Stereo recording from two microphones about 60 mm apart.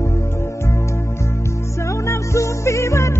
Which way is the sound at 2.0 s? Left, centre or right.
Left.